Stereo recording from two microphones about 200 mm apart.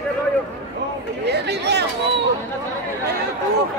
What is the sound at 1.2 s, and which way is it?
Chatter, 55° right (ahead or behind).